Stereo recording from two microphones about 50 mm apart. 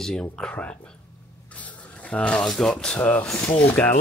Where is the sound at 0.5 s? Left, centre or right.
Left.